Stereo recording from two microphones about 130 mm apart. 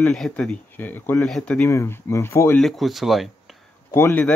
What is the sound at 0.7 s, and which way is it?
Speech, 15° left (ahead or behind).